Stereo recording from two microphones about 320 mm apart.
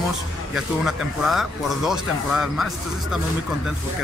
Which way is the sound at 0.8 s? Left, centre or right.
Centre.